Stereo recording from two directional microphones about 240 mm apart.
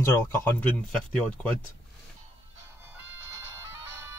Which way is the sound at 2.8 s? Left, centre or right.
Centre.